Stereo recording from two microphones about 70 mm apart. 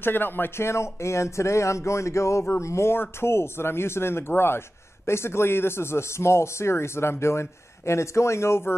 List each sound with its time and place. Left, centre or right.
0.0 s speech: left